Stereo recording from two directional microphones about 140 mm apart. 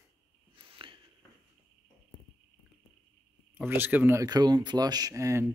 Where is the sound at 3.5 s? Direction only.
15° right (ahead or behind).